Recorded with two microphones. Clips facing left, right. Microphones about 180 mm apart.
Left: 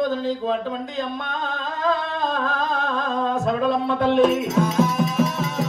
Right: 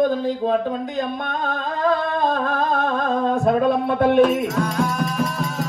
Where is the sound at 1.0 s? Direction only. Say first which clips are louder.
Right 3 dB; 55° right (ahead or behind).